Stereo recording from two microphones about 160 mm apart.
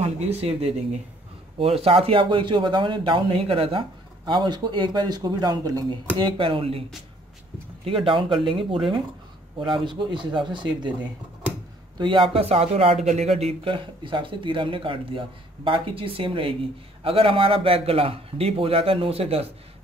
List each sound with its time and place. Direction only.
0.0 s speech: 40° right (ahead or behind)
7.8 s speech: 35° right (ahead or behind)
12.0 s speech: 30° right (ahead or behind)